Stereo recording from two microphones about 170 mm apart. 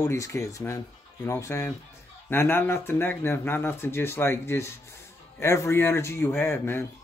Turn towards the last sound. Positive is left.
turn(degrees=15)  # may be behind; listen again after turning